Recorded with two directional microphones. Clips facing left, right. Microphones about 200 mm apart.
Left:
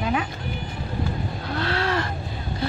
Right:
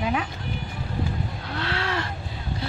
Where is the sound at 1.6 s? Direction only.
40° left (ahead or behind).